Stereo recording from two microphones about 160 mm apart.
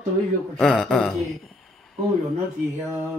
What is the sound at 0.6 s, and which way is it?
Speech, 5° left (ahead or behind).